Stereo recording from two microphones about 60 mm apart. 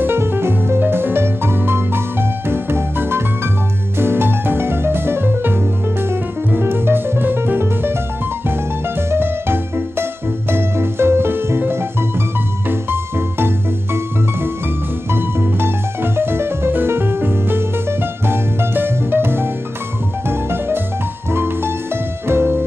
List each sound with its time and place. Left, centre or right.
0.0 s music: right
9.1 s music: right
15.0 s music: right